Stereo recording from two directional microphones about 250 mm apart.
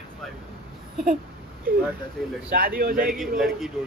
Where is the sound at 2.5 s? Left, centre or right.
Right.